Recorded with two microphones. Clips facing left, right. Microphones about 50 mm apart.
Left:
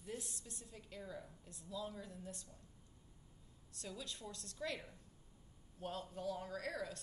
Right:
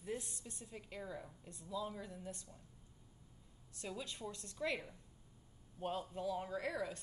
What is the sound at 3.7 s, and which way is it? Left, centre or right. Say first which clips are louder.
A woman's voice: right 3 dB; right.